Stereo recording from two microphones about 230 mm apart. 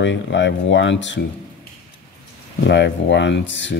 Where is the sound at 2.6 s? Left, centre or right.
Left.